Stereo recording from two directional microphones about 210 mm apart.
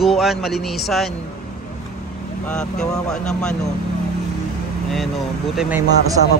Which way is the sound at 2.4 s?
5° left (ahead or behind).